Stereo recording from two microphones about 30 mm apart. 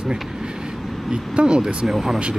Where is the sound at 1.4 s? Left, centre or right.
Right.